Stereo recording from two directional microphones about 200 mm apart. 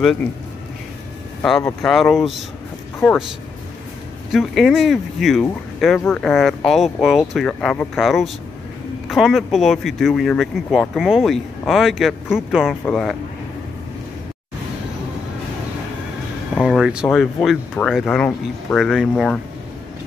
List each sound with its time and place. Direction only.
0.0 s speech: centre (ahead or behind)
1.8 s speech: centre (ahead or behind)
4.3 s speech: centre (ahead or behind)
16.6 s speech: 5° right (ahead or behind)